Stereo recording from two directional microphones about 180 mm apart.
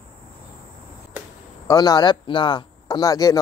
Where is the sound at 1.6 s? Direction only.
20° left (ahead or behind).